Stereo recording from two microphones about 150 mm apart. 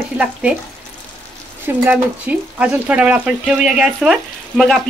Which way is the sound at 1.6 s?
10° right (ahead or behind).